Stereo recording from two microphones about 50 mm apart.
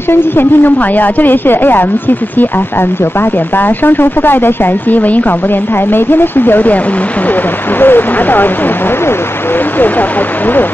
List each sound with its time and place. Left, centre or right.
0.1 s speech: left
7.8 s speech: left